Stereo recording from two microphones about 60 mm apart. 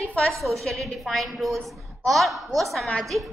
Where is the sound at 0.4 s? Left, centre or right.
Right.